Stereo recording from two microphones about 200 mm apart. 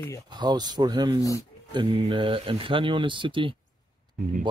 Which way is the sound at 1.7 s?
25° right (ahead or behind).